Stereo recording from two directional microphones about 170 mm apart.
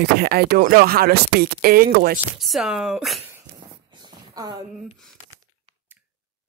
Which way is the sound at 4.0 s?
25° right (ahead or behind).